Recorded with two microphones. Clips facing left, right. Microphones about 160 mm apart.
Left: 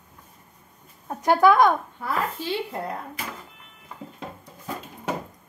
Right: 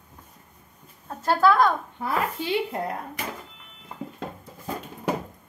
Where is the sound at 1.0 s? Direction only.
15° left (ahead or behind).